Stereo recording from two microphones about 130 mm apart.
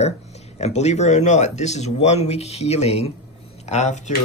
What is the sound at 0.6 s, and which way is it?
Speech, 60° left (ahead or behind).